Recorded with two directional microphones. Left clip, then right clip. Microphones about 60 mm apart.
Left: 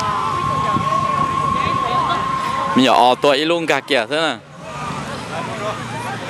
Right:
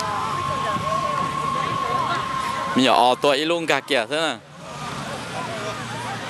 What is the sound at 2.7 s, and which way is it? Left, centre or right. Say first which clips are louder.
Speech: left 4 dB; centre.